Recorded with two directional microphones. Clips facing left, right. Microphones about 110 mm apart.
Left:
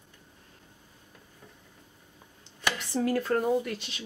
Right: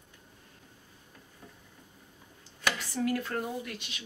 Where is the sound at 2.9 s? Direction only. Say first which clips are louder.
Left 8 dB; 35° left (ahead or behind).